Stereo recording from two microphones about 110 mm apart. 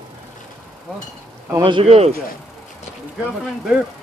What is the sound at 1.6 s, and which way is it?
Speech, 55° right (ahead or behind).